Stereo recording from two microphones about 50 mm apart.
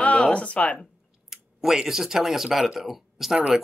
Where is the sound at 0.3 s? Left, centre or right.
Left.